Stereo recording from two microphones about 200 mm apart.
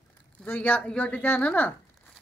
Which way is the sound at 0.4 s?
10° left (ahead or behind).